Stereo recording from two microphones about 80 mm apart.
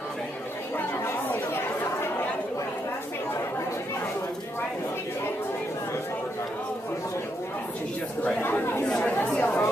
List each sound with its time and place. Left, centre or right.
1.0 s chatter: left
8.4 s chatter: left
8.8 s chatter: centre